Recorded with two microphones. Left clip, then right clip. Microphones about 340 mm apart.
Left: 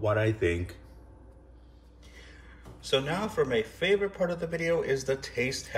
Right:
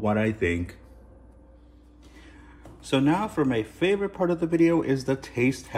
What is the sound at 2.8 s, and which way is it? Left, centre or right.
Speech, centre.